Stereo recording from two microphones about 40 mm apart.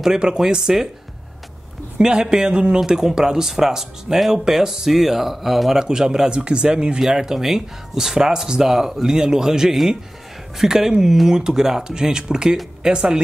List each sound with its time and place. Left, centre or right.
0.0 s speech: centre
2.0 s speech: centre